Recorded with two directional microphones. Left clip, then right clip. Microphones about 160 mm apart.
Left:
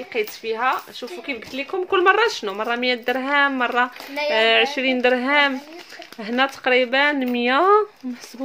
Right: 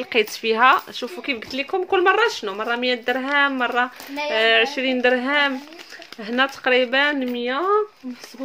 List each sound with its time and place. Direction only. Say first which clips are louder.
0.1 s speech: right 5 dB; 45° right (ahead or behind)
1.9 s speech: left 1 dB; centre (ahead or behind)
7.3 s speech: left 7 dB; 35° left (ahead or behind)